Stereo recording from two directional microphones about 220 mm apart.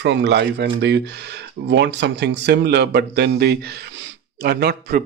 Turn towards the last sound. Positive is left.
turn(degrees=-45)  # may be behind; listen again after turning